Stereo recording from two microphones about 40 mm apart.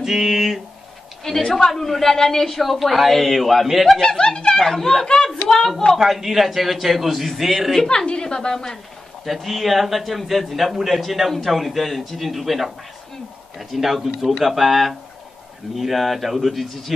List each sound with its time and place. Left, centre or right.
0.0 s speech: centre
1.2 s a man's voice: centre
4.2 s speech: left
5.9 s a man's voice: centre
7.9 s speech: left
9.2 s a man's voice: centre